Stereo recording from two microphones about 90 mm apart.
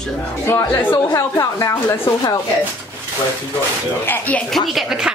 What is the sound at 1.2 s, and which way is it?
Speech, 35° left (ahead or behind).